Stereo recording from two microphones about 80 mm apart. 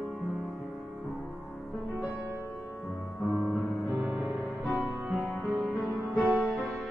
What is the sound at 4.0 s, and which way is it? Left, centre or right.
Music, right.